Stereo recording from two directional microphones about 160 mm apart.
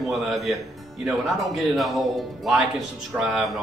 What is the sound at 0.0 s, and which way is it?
Speech, centre (ahead or behind).